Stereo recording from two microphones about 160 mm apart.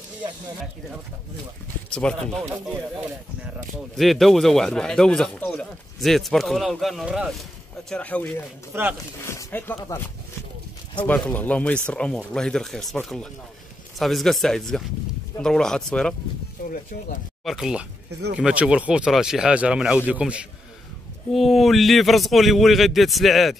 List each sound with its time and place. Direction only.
2.0 s speech: 5° left (ahead or behind)
3.9 s speech: centre (ahead or behind)
7.9 s speech: 10° left (ahead or behind)
8.7 s a man's voice: 15° right (ahead or behind)
9.2 s speech: 15° left (ahead or behind)
16.6 s speech: 60° left (ahead or behind)
17.5 s a man's voice: 5° right (ahead or behind)